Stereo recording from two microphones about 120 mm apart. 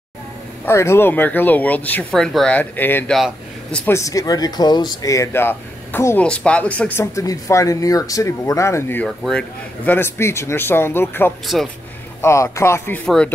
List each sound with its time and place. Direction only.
0.7 s speech: 20° left (ahead or behind)
2.0 s speech: 5° left (ahead or behind)
3.9 s speech: 25° left (ahead or behind); by 7.1 s 10° left (ahead or behind)
7.2 s speech: 25° left (ahead or behind)
9.0 s speech: 5° left (ahead or behind)